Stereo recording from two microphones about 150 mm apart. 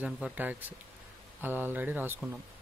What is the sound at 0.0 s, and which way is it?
Speech, 10° right (ahead or behind).